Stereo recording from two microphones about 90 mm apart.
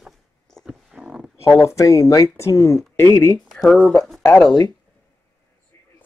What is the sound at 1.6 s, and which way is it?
Speech, 35° left (ahead or behind).